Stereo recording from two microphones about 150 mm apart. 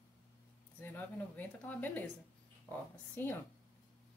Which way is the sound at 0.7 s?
10° left (ahead or behind).